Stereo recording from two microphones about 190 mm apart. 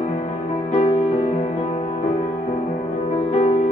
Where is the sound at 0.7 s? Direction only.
35° left (ahead or behind).